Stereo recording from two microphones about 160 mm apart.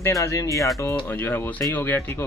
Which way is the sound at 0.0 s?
20° left (ahead or behind).